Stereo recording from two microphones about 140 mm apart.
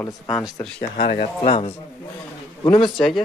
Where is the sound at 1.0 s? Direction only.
45° left (ahead or behind).